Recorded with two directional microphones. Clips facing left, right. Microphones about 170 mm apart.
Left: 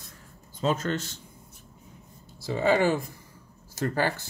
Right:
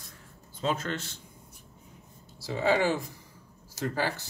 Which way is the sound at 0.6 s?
40° left (ahead or behind).